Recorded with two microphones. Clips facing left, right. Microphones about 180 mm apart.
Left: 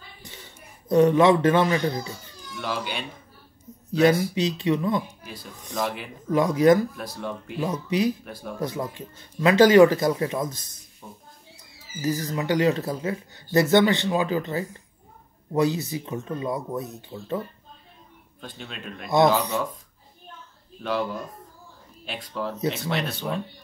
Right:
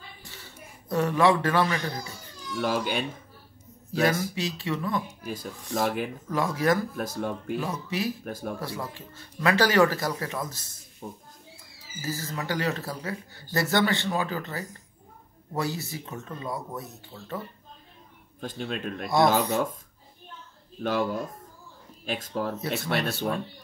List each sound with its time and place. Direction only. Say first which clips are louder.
0.2 s speech: left 1 dB; 20° left (ahead or behind)
2.5 s speech: right 4 dB; 45° right (ahead or behind)
4.0 s speech: left 6 dB; 20° left (ahead or behind)
5.2 s speech: right 5 dB; 45° right (ahead or behind)
6.3 s speech: left 7 dB; 20° left (ahead or behind)
7.0 s speech: right 2 dB; 45° right (ahead or behind)
7.6 s speech: left 10 dB; 20° left (ahead or behind)
8.3 s speech: right 3 dB; 45° right (ahead or behind)
8.5 s speech: left 5 dB; 20° left (ahead or behind)
11.0 s speech: right 5 dB; 45° right (ahead or behind)
12.0 s speech: left 7 dB; 15° left (ahead or behind)
18.4 s speech: right 6 dB; 45° right (ahead or behind)
20.8 s speech: right 1 dB; 45° right (ahead or behind)